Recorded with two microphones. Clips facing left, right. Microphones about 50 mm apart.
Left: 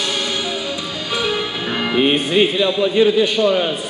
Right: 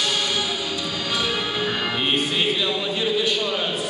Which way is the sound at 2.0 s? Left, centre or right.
Left.